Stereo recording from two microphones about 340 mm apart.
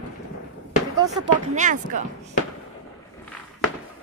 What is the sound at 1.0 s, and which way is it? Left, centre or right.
Speech, centre.